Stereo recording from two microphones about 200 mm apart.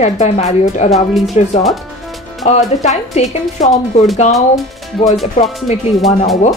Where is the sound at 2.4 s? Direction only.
35° left (ahead or behind).